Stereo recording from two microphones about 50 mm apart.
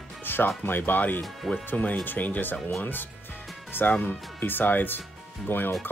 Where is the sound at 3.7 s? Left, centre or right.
Left.